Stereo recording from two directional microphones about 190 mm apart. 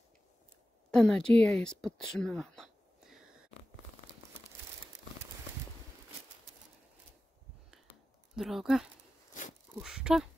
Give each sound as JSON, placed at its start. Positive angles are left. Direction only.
{"t": 0.9, "sound": "speech", "side_deg": 5}
{"t": 8.4, "sound": "speech", "side_deg": 0}